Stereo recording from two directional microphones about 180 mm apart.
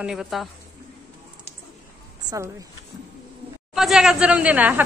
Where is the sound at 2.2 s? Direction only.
15° right (ahead or behind).